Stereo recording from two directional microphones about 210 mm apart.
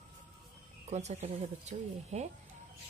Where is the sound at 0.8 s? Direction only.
30° right (ahead or behind).